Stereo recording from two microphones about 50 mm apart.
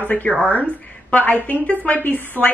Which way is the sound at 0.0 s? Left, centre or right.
Left.